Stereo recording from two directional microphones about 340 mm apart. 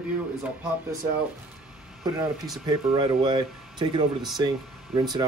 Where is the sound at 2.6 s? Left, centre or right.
Centre.